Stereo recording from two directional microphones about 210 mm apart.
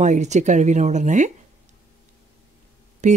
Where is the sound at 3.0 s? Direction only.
35° right (ahead or behind).